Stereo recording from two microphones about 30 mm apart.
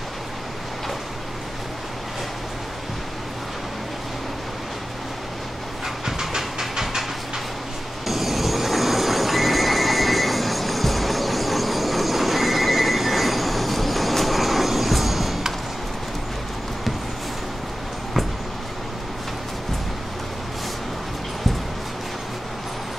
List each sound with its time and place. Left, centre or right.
6.0 s train: centre
8.1 s neigh: centre